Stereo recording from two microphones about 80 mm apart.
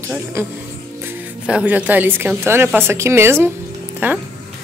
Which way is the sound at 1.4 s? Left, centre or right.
Centre.